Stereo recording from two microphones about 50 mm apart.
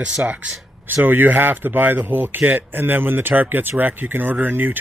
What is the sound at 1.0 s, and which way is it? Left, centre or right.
Speech, right.